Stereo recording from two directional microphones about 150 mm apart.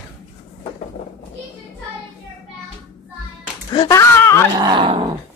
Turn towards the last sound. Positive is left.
turn(degrees=-35)  # may be behind; listen again after turning